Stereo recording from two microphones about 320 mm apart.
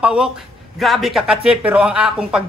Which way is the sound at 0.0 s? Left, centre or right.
Centre.